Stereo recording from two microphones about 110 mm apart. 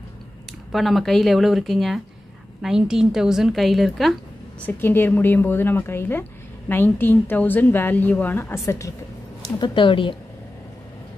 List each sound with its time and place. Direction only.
0.7 s a woman's voice: centre (ahead or behind)
4.6 s a woman's voice: 15° left (ahead or behind)
9.4 s a woman's voice: 45° left (ahead or behind)